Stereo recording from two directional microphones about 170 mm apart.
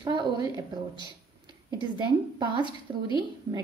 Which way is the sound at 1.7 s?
25° right (ahead or behind).